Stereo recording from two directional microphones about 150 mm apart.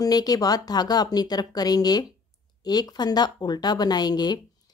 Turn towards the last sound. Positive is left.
turn(degrees=25)  # may be behind; listen again after turning